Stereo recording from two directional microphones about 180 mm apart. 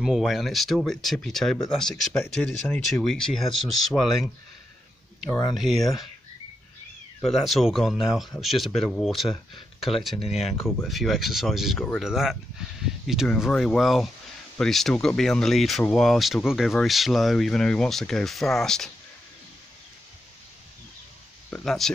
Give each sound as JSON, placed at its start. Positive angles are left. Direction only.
{"t": 0.0, "sound": "speech", "side_deg": 0}
{"t": 5.6, "sound": "speech", "side_deg": 0}
{"t": 7.2, "sound": "speech", "side_deg": 0}
{"t": 10.1, "sound": "speech", "side_deg": 35}
{"t": 10.8, "sound": "speech", "side_deg": 0}
{"t": 21.5, "sound": "speech", "side_deg": 5}